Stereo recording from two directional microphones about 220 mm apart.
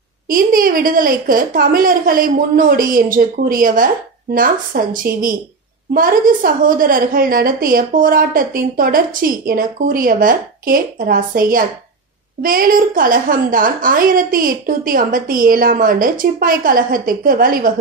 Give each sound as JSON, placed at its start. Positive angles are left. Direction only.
{"t": 0.3, "sound": "a woman's voice", "side_deg": -40}